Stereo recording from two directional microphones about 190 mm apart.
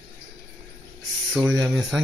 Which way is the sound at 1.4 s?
5° right (ahead or behind).